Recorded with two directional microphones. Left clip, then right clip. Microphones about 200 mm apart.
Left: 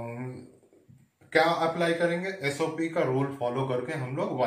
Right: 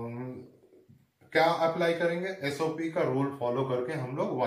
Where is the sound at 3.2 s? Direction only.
20° left (ahead or behind).